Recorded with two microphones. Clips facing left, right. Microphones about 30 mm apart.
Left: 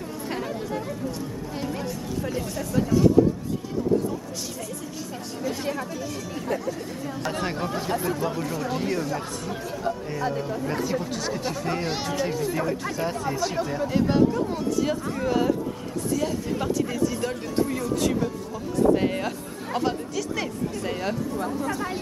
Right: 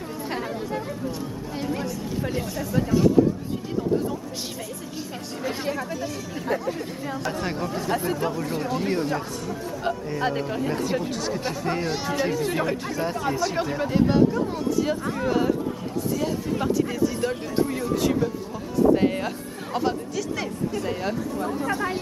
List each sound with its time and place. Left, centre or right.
0.3 s chatter: centre
1.6 s speech: centre
6.4 s speech: centre
8.8 s speech: right
10.2 s speech: right
11.1 s speech: centre
12.8 s speech: centre
16.5 s speech: centre
21.5 s speech: centre